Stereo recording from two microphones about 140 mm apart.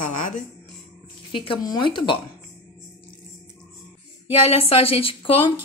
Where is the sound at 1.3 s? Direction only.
35° left (ahead or behind).